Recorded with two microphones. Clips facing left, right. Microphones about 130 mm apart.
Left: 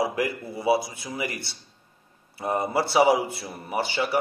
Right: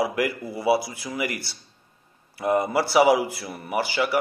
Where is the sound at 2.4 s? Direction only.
25° left (ahead or behind).